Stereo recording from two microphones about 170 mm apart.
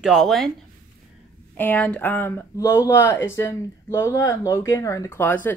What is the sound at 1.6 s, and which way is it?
Speech, 10° left (ahead or behind).